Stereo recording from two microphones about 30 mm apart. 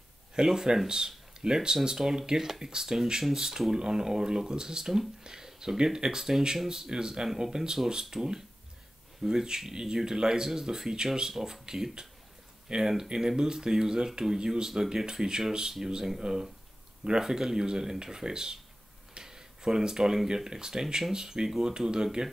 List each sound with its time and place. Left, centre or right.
0.4 s speech: right
19.2 s a sound: centre
20.3 s speech: centre